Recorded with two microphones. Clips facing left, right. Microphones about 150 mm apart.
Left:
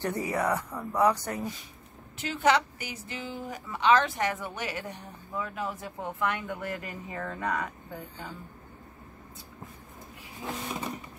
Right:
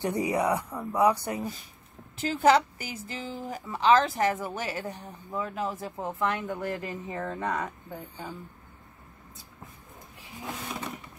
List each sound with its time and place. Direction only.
0.0 s speech: 15° right (ahead or behind)
2.1 s a woman's voice: 35° right (ahead or behind)
10.4 s printer: 5° left (ahead or behind)